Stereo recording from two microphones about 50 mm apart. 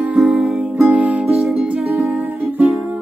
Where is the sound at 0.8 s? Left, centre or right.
Right.